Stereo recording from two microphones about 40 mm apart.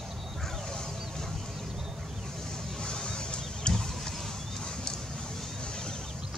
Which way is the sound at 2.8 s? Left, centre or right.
Centre.